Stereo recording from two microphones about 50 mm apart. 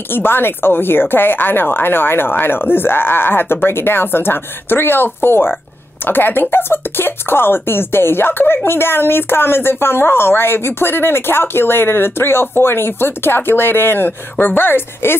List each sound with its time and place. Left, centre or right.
0.1 s speech: left